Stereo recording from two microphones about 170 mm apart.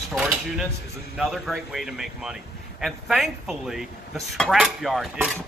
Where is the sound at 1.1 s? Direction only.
Centre (ahead or behind).